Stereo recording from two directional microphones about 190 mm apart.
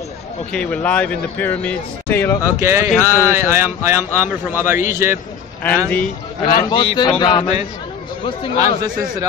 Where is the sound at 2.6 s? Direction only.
15° right (ahead or behind).